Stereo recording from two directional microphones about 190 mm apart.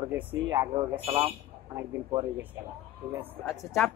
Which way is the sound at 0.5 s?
20° right (ahead or behind).